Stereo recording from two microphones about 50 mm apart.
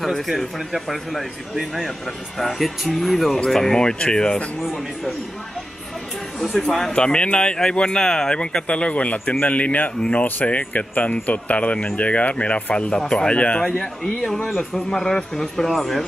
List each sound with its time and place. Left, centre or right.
0.0 s speech: centre
6.4 s speech: centre
6.9 s a man's voice: centre
14.2 s speech: centre